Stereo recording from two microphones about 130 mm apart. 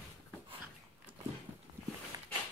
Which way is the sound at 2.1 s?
25° right (ahead or behind).